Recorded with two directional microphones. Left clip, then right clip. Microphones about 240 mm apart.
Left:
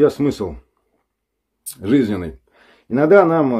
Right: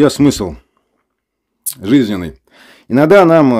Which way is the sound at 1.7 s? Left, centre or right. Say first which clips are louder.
Right 4 dB; right.